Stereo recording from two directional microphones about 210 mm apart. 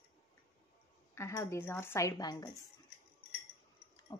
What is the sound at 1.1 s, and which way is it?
A woman's voice, 15° left (ahead or behind).